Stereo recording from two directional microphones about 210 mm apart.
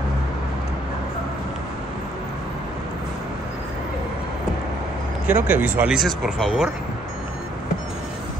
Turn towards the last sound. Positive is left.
turn(degrees=-5)  # may be behind; listen again after turning